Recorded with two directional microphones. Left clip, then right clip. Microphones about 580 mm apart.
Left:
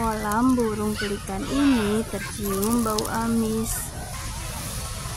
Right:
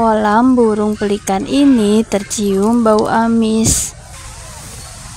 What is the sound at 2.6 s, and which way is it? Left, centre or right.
Speech, centre.